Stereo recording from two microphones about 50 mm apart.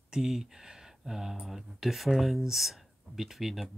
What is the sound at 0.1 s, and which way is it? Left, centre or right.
Speech, centre.